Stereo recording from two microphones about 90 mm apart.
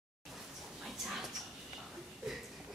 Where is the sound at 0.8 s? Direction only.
Centre (ahead or behind).